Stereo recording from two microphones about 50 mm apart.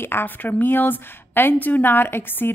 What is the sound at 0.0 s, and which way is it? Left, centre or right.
A woman's voice, left.